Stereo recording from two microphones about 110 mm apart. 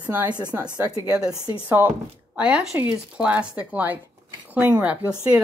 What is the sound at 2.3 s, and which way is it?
Speech, 10° right (ahead or behind).